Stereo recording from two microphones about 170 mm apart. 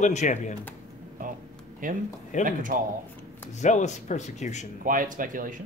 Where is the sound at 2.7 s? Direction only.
55° right (ahead or behind).